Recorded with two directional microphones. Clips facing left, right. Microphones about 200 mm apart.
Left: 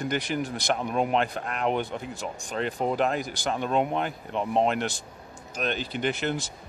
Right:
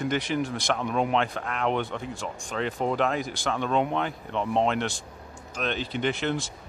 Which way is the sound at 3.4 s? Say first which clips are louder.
Even; 40° left (ahead or behind).